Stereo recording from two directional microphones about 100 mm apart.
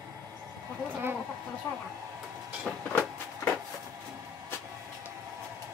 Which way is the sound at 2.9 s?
20° left (ahead or behind).